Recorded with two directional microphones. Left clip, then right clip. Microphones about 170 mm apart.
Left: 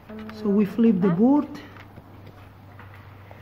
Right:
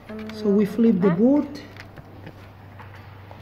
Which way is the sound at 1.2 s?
40° left (ahead or behind).